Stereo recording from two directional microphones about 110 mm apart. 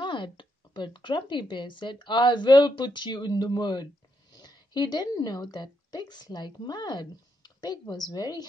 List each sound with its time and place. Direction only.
0.0 s speech: 45° left (ahead or behind)